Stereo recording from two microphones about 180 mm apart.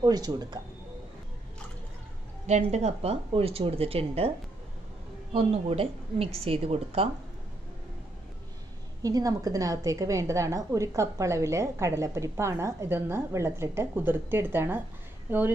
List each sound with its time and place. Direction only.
0.0 s speech: 20° right (ahead or behind)
2.4 s speech: 40° right (ahead or behind)
5.3 s speech: 30° right (ahead or behind)
9.0 s a woman's voice: 20° right (ahead or behind)